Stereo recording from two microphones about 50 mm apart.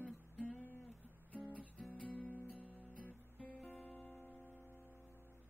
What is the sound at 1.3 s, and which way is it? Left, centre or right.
Music, left.